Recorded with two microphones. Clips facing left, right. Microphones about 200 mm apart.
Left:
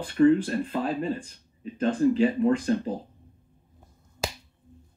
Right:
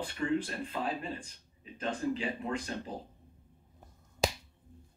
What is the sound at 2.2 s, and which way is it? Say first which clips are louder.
Speech: left 13 dB; 50° left (ahead or behind).